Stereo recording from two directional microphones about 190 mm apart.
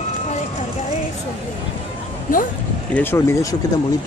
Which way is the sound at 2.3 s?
45° left (ahead or behind).